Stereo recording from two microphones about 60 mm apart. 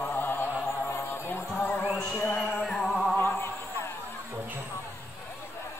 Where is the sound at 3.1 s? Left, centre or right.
Left.